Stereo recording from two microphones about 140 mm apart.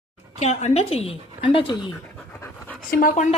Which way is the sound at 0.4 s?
55° left (ahead or behind).